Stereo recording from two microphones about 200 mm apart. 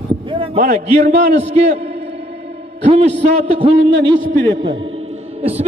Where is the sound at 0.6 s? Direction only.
45° right (ahead or behind).